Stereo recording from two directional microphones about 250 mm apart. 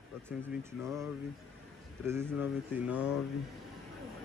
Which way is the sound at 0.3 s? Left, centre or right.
Centre.